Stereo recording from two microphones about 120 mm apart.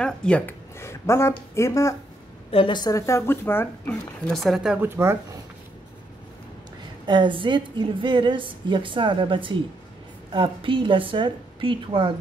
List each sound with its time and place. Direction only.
0.0 s speech: 10° left (ahead or behind)
0.7 s speech: 20° left (ahead or behind)
2.5 s a woman's voice: 50° left (ahead or behind)
2.8 s speech: 25° left (ahead or behind)
4.3 s speech: centre (ahead or behind)
4.7 s speech: 20° right (ahead or behind)
7.1 s a woman's voice: 40° right (ahead or behind)